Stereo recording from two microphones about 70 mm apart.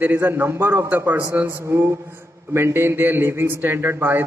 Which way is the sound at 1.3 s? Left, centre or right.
Right.